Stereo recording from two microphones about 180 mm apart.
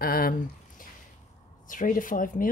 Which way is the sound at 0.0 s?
55° left (ahead or behind).